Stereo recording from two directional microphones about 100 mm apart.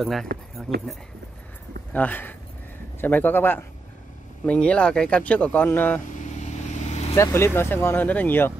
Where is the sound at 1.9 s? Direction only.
15° left (ahead or behind).